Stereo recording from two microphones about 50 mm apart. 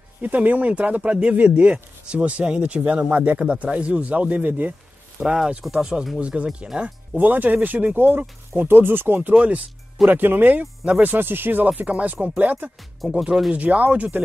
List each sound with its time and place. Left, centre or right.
0.2 s speech: right
5.2 s speech: centre
7.2 s speech: right
9.3 s speech: right
10.0 s speech: right
11.7 s speech: right
13.0 s speech: centre
13.5 s speech: right